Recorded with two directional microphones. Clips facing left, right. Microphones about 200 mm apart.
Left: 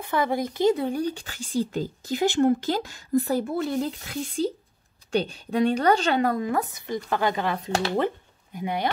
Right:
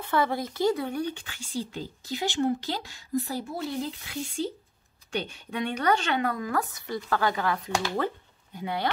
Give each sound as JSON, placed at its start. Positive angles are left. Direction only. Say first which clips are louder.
{"t": 0.0, "sound": "a woman's voice", "louder": "left 2 dB", "side_deg": 15}
{"t": 6.5, "sound": "speech", "louder": "left 3 dB", "side_deg": 20}